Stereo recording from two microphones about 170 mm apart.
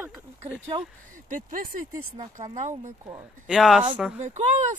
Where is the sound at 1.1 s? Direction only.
50° right (ahead or behind).